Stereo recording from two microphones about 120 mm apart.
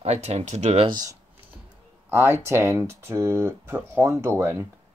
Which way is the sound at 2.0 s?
20° right (ahead or behind).